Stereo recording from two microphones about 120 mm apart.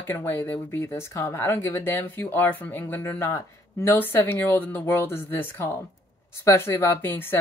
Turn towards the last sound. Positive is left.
turn(degrees=20)  # may be behind; listen again after turning